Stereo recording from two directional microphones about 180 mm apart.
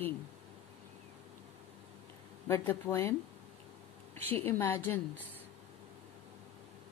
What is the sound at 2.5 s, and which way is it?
Speech, 15° left (ahead or behind).